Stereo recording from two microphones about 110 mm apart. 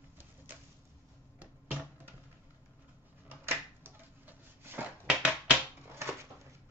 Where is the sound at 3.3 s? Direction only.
20° right (ahead or behind).